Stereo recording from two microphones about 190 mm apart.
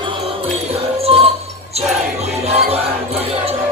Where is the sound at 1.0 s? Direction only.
30° right (ahead or behind).